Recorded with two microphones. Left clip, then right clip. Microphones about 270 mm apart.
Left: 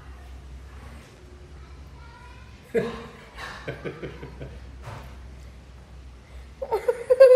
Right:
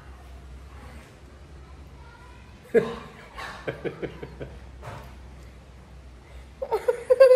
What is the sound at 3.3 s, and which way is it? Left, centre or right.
Cough, right.